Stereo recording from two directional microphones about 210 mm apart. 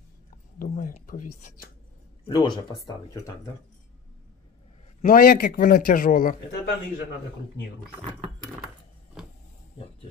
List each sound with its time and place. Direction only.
0.6 s a sound: 40° left (ahead or behind)
2.2 s speech: 20° left (ahead or behind)
5.0 s a man's voice: 45° left (ahead or behind)